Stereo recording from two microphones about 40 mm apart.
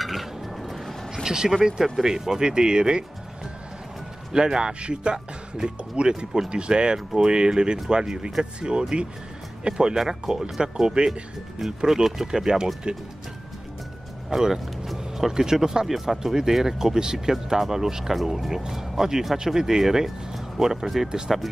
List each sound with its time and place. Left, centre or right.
0.0 s music: centre
1.2 s speech: centre
4.3 s speech: centre
14.3 s speech: centre